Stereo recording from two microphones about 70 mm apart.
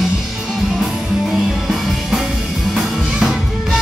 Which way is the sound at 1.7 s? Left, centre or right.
Centre.